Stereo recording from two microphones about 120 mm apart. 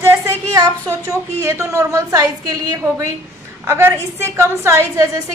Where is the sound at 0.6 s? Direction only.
25° right (ahead or behind).